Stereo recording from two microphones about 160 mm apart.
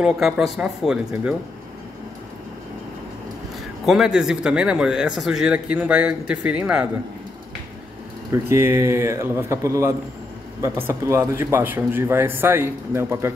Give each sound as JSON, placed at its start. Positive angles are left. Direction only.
{"t": 0.0, "sound": "speech", "side_deg": -5}
{"t": 3.8, "sound": "speech", "side_deg": 0}
{"t": 8.3, "sound": "a man's voice", "side_deg": -15}